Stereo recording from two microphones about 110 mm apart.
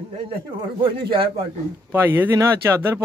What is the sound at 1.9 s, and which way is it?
Speech, 20° right (ahead or behind).